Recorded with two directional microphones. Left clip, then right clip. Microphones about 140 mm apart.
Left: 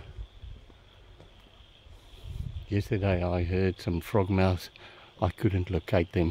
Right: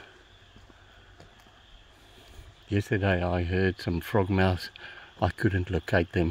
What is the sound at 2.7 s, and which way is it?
Speech, 5° left (ahead or behind).